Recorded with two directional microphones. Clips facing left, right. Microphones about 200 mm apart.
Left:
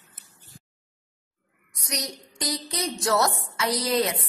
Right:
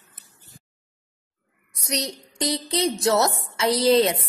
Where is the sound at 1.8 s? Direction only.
25° right (ahead or behind).